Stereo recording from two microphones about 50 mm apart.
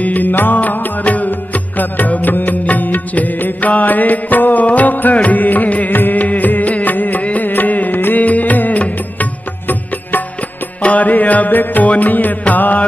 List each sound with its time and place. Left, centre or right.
0.0 s music: left